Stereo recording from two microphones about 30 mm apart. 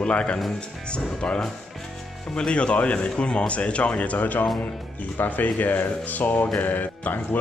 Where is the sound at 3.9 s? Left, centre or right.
Left.